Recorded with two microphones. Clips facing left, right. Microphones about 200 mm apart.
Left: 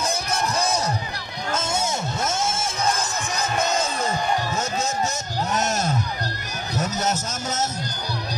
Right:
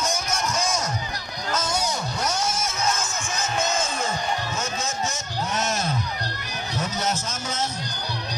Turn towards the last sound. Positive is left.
turn(degrees=45)  # may be behind; listen again after turning